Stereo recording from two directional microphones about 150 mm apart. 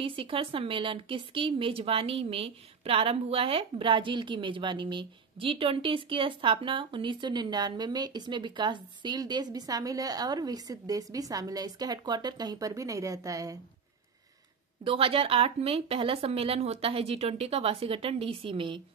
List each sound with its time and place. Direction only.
0.0 s a woman's voice: 35° right (ahead or behind)
14.9 s a woman's voice: 40° right (ahead or behind)